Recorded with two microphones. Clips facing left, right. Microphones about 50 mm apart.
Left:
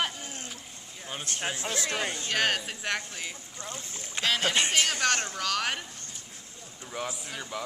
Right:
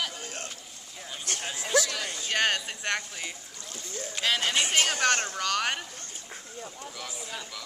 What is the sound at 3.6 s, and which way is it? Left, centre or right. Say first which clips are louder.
Speech: right 1 dB; left.